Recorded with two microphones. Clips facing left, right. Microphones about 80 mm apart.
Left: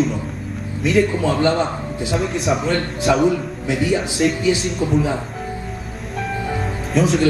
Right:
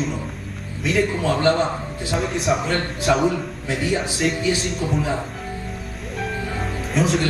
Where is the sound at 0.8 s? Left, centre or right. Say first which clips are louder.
Left 4 dB; centre.